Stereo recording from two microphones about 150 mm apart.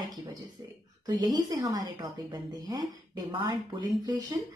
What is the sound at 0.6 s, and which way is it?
Speech, 25° right (ahead or behind).